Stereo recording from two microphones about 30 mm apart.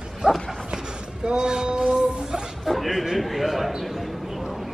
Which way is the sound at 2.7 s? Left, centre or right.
Centre.